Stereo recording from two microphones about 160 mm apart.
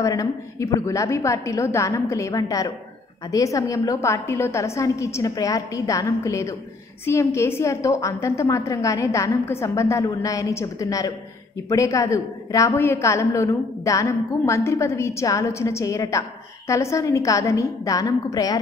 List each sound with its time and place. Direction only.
0.0 s a woman's voice: 20° left (ahead or behind)